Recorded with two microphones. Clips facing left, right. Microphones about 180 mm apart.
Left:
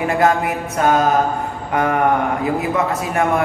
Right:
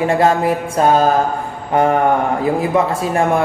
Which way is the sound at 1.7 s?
30° right (ahead or behind).